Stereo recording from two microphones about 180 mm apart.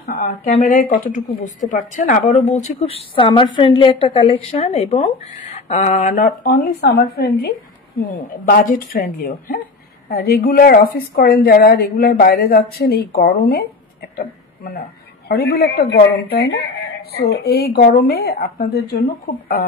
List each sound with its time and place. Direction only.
0.4 s a woman's voice: 40° left (ahead or behind); by 7.6 s 60° left (ahead or behind)
8.9 s speech: 55° left (ahead or behind)
14.1 s a sound: 55° left (ahead or behind)
15.2 s speech: 60° left (ahead or behind)